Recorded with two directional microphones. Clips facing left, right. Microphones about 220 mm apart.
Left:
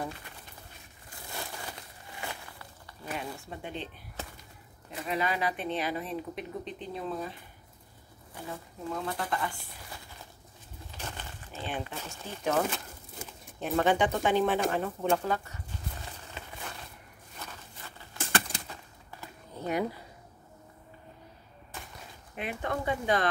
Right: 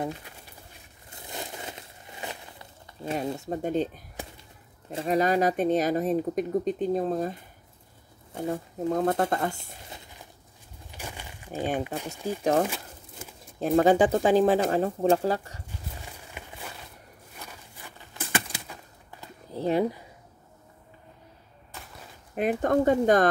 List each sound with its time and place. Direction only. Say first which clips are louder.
1.1 s a sound: right 3 dB; 20° right (ahead or behind)
3.3 s speech: right 12 dB; 45° right (ahead or behind)
5.0 s speech: right 8 dB; 45° right (ahead or behind)
8.4 s speech: right 11 dB; 45° right (ahead or behind)
9.8 s a sound: right 1 dB; 20° right (ahead or behind)
10.9 s crushing: right 2 dB; 10° right (ahead or behind)
12.0 s speech: right 5 dB; 10° right (ahead or behind)
13.6 s speech: right 6 dB; 35° right (ahead or behind)
16.3 s a sound: right 2 dB; 15° right (ahead or behind)
19.5 s speech: right 6 dB; 30° right (ahead or behind)
22.3 s speech: right 10 dB; 45° right (ahead or behind)